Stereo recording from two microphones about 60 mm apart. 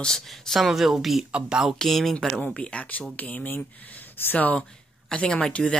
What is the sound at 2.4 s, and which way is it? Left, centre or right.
Speech, centre.